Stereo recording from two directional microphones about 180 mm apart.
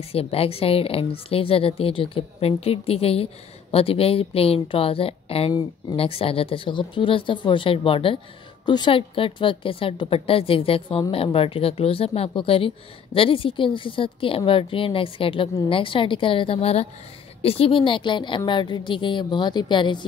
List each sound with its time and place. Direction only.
0.0 s a woman's voice: 35° left (ahead or behind)